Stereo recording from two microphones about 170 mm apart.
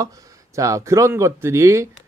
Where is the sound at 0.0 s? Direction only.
20° right (ahead or behind).